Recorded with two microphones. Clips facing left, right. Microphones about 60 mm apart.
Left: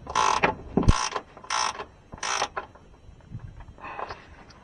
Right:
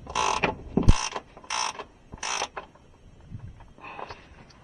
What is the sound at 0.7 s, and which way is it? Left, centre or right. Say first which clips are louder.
Mechanisms: left 1 dB; left.